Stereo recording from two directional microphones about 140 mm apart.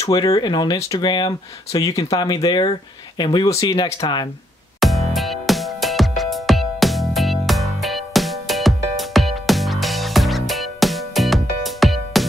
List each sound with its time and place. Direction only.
0.1 s speech: 30° left (ahead or behind)
4.7 s music: centre (ahead or behind)